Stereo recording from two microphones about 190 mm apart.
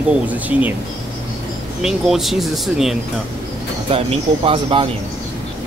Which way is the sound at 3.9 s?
30° right (ahead or behind).